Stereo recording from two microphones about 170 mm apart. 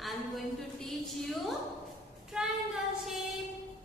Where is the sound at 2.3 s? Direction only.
Centre (ahead or behind).